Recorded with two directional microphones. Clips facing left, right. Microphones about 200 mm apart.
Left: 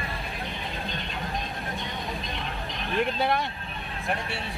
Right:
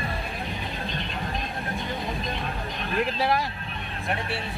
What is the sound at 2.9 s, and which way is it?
Speech, centre (ahead or behind).